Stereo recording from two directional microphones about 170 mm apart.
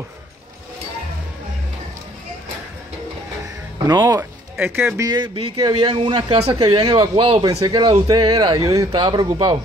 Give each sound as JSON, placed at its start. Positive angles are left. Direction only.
{"t": 3.8, "sound": "speech", "side_deg": -25}
{"t": 4.2, "sound": "speech", "side_deg": -15}